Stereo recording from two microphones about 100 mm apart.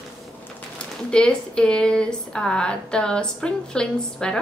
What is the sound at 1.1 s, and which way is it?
Speech, 10° left (ahead or behind).